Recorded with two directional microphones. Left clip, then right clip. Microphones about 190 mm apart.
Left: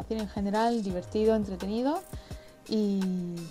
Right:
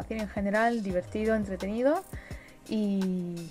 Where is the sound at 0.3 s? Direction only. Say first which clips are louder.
Right 2 dB; 15° left (ahead or behind).